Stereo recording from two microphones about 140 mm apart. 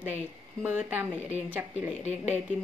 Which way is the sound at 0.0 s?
15° right (ahead or behind).